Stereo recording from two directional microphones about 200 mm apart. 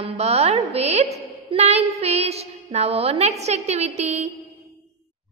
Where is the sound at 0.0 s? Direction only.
30° right (ahead or behind).